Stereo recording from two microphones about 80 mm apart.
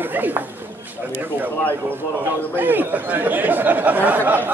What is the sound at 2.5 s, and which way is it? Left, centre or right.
Speech, right.